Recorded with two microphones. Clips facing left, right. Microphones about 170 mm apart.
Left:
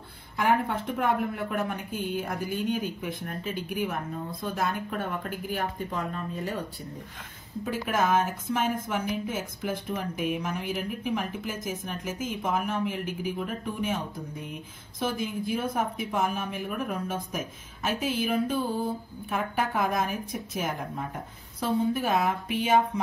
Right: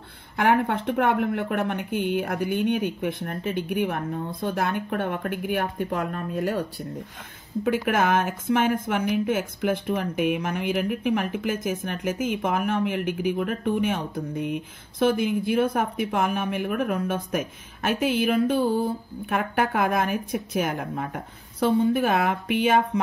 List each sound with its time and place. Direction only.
0.4 s speech: 65° right (ahead or behind)
7.6 s speech: 70° right (ahead or behind)